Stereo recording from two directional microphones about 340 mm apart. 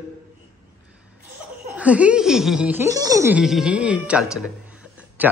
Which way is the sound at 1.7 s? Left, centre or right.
Centre.